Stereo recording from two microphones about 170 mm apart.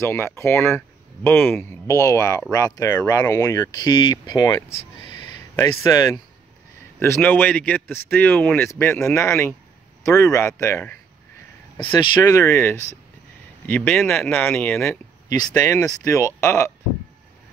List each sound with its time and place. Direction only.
0.0 s speech: 15° left (ahead or behind)
7.0 s speech: 10° left (ahead or behind)
12.1 s speech: 20° left (ahead or behind)